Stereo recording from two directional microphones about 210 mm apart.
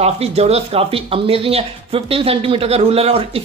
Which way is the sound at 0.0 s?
30° right (ahead or behind).